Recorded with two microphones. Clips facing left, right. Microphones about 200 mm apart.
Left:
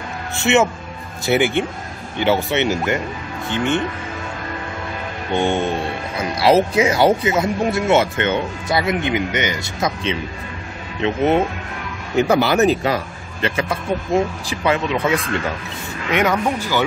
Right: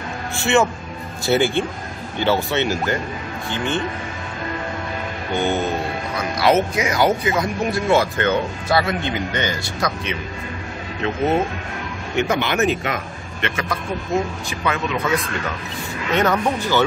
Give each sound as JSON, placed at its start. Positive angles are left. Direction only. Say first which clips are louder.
{"t": 0.4, "sound": "speech", "louder": "left 2 dB", "side_deg": 20}
{"t": 5.3, "sound": "speech", "louder": "left 2 dB", "side_deg": 30}
{"t": 12.2, "sound": "speech", "louder": "left 5 dB", "side_deg": 35}
{"t": 16.1, "sound": "speech", "louder": "left 1 dB", "side_deg": 10}